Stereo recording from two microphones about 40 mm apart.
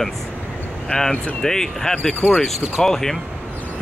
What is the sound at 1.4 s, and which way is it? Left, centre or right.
Speech, centre.